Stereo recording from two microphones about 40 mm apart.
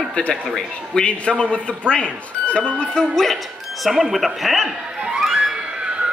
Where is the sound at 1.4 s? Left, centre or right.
Left.